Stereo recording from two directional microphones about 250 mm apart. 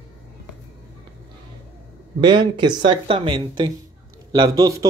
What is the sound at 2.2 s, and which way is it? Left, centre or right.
Speech, centre.